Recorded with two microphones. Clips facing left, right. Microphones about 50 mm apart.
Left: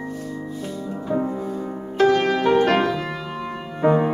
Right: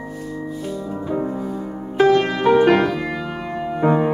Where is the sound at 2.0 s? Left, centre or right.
Centre.